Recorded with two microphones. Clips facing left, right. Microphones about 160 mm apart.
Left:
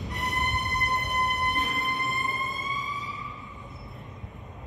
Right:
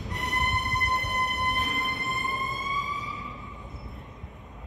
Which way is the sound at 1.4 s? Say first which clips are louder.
Left 1 dB; centre (ahead or behind).